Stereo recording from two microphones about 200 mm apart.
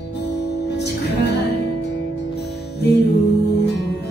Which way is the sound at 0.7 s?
55° left (ahead or behind).